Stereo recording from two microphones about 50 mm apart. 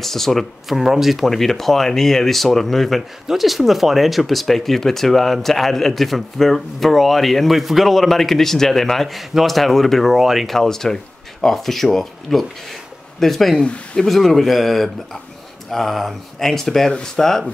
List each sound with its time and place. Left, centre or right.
0.0 s speech: centre
13.6 s speech: centre
14.0 s speech: centre